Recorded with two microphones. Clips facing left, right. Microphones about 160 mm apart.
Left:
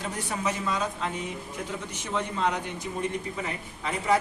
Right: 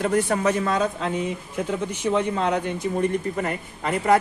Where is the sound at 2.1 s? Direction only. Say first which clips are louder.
Right 5 dB; 60° right (ahead or behind).